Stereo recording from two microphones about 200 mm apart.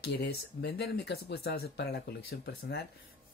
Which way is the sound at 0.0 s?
55° left (ahead or behind).